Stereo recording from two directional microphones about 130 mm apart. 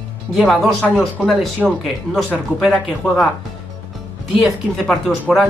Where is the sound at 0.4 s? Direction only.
Centre (ahead or behind).